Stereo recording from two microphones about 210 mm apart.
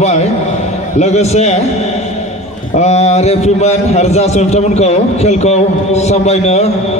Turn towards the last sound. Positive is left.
turn(degrees=30)  # may be behind; listen again after turning